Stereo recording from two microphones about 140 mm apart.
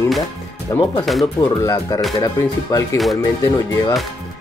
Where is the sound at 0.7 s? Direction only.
30° left (ahead or behind).